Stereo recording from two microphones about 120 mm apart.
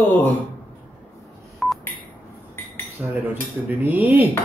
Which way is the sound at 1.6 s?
Centre (ahead or behind).